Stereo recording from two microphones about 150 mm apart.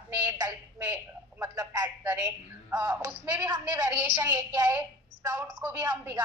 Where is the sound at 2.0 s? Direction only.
10° right (ahead or behind).